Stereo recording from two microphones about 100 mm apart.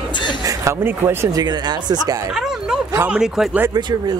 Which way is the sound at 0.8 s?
20° right (ahead or behind).